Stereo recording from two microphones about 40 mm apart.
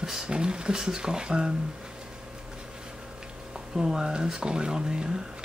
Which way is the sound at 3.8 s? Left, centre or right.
Centre.